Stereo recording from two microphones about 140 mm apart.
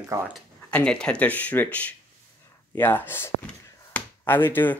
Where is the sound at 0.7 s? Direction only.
10° left (ahead or behind).